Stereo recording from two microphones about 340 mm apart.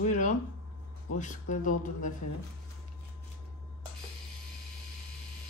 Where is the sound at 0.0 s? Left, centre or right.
Left.